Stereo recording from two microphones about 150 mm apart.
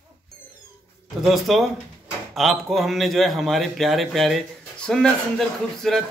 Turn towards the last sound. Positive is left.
turn(degrees=5)  # may be behind; listen again after turning